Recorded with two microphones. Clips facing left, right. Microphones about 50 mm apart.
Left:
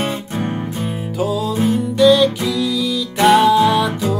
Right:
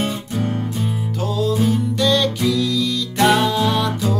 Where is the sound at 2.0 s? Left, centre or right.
Centre.